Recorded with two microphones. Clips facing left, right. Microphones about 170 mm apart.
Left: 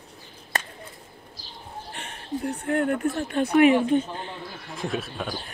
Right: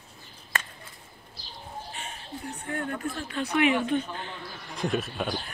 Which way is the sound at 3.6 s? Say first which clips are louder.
Left 6 dB; 30° left (ahead or behind).